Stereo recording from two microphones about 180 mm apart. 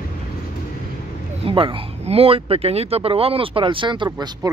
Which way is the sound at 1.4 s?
30° right (ahead or behind).